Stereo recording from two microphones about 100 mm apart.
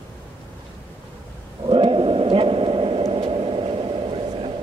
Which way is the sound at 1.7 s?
65° right (ahead or behind).